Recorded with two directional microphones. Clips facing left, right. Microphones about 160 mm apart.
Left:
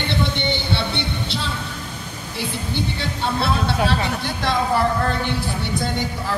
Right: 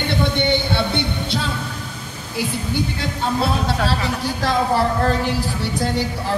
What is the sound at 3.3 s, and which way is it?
A woman's voice, 40° right (ahead or behind).